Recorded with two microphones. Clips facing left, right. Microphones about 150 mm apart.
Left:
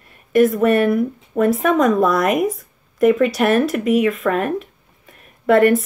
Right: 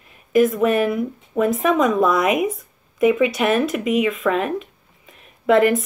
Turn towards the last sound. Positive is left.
turn(degrees=0)  # may be behind; listen again after turning